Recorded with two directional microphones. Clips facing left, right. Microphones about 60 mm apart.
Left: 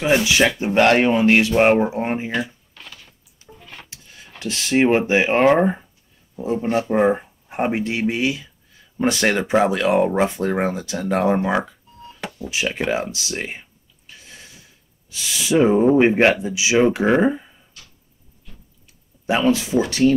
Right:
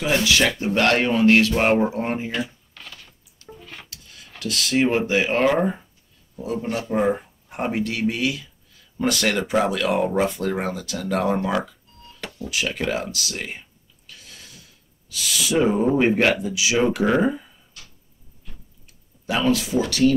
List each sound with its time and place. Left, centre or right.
0.0 s speech: left
3.4 s a sound: centre
4.4 s speech: left
14.0 s a sound: left
15.0 s speech: left
19.2 s speech: left